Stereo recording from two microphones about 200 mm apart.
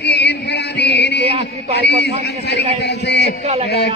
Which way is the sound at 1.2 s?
30° right (ahead or behind).